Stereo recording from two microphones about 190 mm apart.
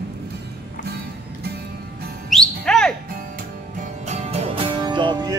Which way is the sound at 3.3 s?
40° right (ahead or behind).